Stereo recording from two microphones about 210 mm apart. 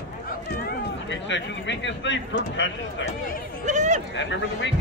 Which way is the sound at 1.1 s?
60° left (ahead or behind).